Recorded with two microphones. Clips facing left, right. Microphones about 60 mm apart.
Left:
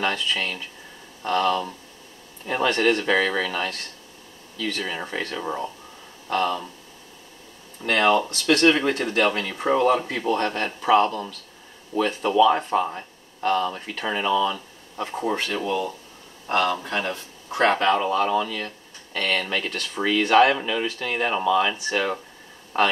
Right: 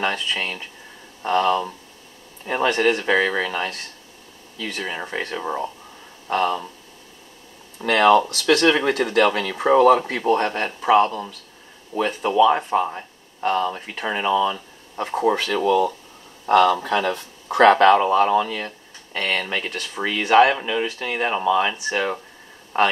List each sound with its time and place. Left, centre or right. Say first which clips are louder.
0.0 s speech: right 1 dB; centre
7.8 s speech: right 4 dB; right
8.3 s speech: right 1 dB; right
8.8 s speech: right 3 dB; right
9.9 s speech: right 2 dB; right
10.2 s speech: right 3 dB; right
15.3 s speech: right 6 dB; right
17.0 s speech: right 5 dB; right
18.0 s speech: right 4 dB; right